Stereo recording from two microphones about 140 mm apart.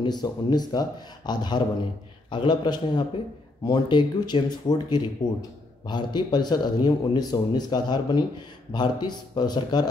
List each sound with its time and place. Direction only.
0.0 s a man's voice: 30° left (ahead or behind)